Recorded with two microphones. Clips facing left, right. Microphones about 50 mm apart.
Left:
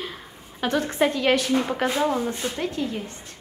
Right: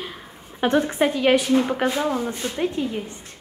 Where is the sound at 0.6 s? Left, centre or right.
Centre.